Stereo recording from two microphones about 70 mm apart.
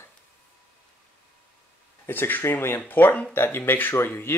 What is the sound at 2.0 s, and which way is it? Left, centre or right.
Speech, left.